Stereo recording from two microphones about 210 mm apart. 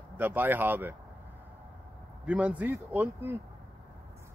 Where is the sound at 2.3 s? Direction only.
5° right (ahead or behind).